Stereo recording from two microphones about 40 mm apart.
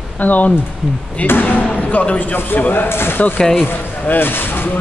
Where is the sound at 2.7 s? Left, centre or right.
Left.